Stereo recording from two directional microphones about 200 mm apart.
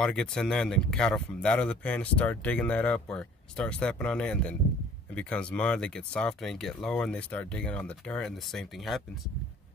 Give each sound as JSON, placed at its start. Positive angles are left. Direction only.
{"t": 0.0, "sound": "speech", "side_deg": 5}